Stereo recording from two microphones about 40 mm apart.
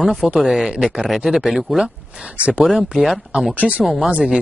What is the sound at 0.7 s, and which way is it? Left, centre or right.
Speech, centre.